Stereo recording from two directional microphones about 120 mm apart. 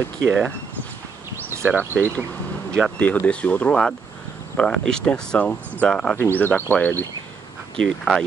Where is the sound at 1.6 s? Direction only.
15° right (ahead or behind).